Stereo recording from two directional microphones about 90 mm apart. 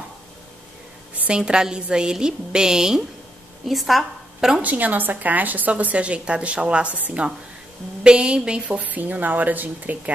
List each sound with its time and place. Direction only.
1.1 s a woman's voice: 15° right (ahead or behind)
4.6 s a woman's voice: 15° right (ahead or behind)